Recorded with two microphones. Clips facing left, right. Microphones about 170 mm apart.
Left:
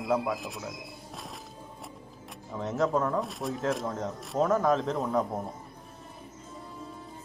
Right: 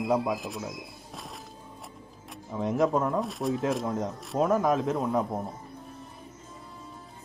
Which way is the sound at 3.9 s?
10° right (ahead or behind).